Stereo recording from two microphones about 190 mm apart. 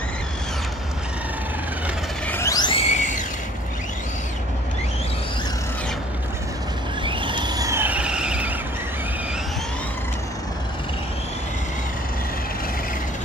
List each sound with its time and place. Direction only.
2.2 s music: 15° left (ahead or behind); by 3.2 s 40° left (ahead or behind)
7.0 s vehicle: 25° right (ahead or behind); by 8.5 s 5° right (ahead or behind)